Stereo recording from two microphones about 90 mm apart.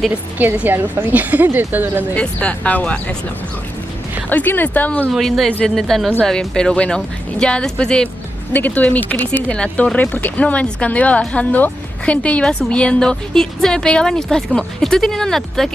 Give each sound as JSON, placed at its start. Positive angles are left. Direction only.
{"t": 0.6, "sound": "a woman's voice", "side_deg": -20}
{"t": 2.1, "sound": "speech", "side_deg": 15}
{"t": 4.3, "sound": "speech", "side_deg": 20}
{"t": 5.1, "sound": "speech", "side_deg": 0}